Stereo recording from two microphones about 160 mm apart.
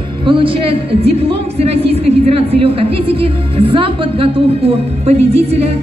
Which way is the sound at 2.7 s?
35° right (ahead or behind).